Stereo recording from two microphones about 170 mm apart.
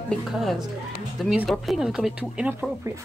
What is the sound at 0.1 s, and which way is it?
Speech, centre (ahead or behind).